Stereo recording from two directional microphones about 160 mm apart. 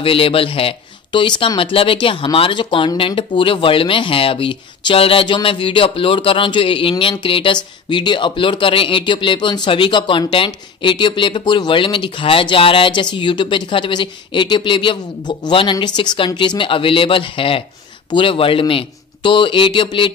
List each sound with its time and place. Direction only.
0.0 s speech: 35° left (ahead or behind)